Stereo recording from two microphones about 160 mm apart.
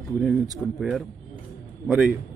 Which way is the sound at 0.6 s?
20° left (ahead or behind).